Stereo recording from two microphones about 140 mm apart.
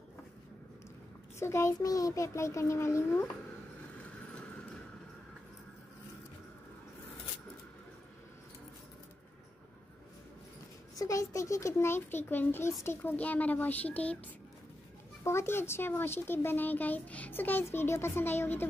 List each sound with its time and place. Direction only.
1.4 s a child's voice: 20° left (ahead or behind)
4.0 s vehicle: 10° left (ahead or behind)
11.0 s a child's voice: 20° left (ahead or behind)
15.2 s a child's voice: 20° left (ahead or behind)